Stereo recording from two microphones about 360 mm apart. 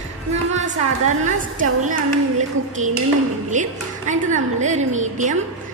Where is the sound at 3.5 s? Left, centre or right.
Right.